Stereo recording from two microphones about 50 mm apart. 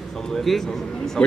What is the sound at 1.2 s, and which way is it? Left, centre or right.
Speech, centre.